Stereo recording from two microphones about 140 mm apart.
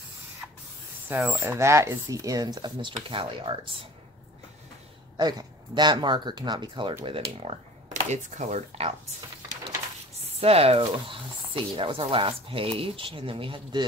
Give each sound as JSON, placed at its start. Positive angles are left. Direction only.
{"t": 1.0, "sound": "speech", "side_deg": -15}
{"t": 5.2, "sound": "speech", "side_deg": -30}
{"t": 7.9, "sound": "speech", "side_deg": -60}
{"t": 10.4, "sound": "speech", "side_deg": -45}